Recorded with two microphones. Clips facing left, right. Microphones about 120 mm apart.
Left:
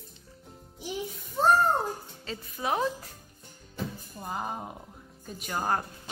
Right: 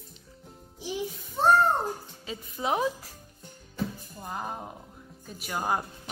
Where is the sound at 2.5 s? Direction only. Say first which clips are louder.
Right 1 dB; 20° right (ahead or behind).